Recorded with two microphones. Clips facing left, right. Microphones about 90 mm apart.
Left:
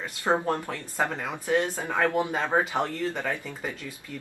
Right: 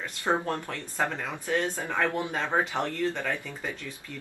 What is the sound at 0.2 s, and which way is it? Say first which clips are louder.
Speech: left 3 dB; 20° left (ahead or behind).